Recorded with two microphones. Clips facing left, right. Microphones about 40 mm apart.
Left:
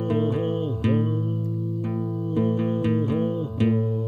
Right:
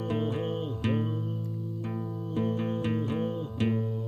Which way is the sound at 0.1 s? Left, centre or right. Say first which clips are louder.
Left 7 dB; left.